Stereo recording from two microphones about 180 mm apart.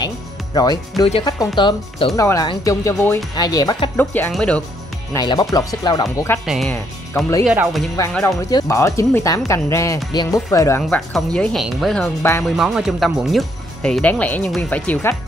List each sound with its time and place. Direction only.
0.6 s speech: 20° left (ahead or behind)
3.9 s speech: 10° left (ahead or behind)
5.1 s speech: 20° left (ahead or behind)
6.4 s speech: centre (ahead or behind)
8.1 s speech: 5° left (ahead or behind)
8.4 s speech: 20° left (ahead or behind)
10.8 s speech: 5° left (ahead or behind)
12.4 s speech: 5° right (ahead or behind)